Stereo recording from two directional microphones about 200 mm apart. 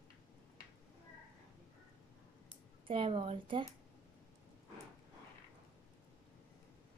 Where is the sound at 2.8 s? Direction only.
25° right (ahead or behind).